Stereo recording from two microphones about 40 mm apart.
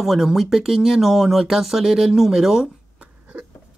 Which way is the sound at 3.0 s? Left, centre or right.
Right.